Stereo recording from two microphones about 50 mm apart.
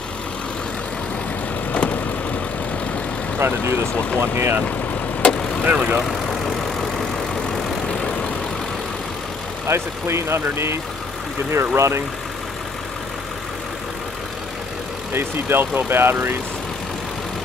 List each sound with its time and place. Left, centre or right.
1.7 s vehicle: left
3.3 s speech: right
3.9 s speech: left
4.2 s speech: right
5.2 s vehicle: centre
5.8 s speech: right
6.0 s vehicle: centre
9.7 s speech: right
15.1 s speech: right